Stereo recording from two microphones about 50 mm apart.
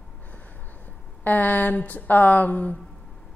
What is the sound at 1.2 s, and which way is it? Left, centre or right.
A woman's voice, left.